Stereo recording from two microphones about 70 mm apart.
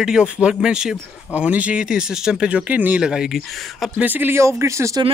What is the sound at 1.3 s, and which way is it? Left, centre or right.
Speech, centre.